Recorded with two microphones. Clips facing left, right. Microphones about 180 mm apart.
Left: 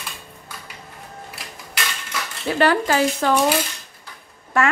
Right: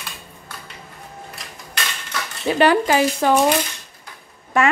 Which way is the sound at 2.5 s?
15° right (ahead or behind).